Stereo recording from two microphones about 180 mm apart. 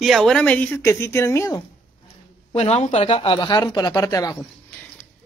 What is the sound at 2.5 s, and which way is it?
Speech, 35° left (ahead or behind).